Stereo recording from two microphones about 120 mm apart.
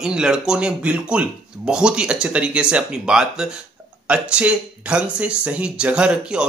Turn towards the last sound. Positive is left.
turn(degrees=-5)  # may be behind; listen again after turning